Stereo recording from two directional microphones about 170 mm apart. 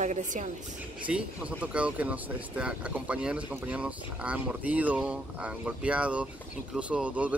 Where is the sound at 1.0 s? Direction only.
10° right (ahead or behind).